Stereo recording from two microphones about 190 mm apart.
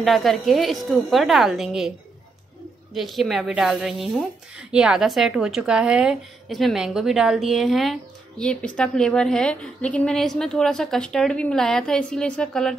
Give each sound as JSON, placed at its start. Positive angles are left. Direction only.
{"t": 0.0, "sound": "a woman's voice", "side_deg": 0}
{"t": 2.9, "sound": "a woman's voice", "side_deg": 0}